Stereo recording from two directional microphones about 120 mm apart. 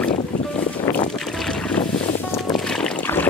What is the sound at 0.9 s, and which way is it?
Boat, 15° left (ahead or behind).